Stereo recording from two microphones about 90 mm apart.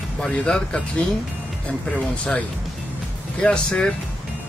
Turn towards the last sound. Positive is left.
turn(degrees=10)  # may be behind; listen again after turning